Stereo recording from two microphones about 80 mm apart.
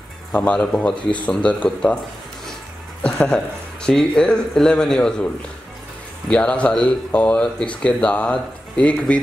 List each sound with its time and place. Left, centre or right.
0.4 s speech: centre
3.0 s speech: centre